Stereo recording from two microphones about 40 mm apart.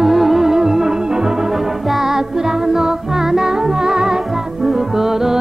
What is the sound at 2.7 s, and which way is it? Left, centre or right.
Music, centre.